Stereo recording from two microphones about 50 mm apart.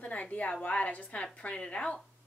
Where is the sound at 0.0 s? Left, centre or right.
Left.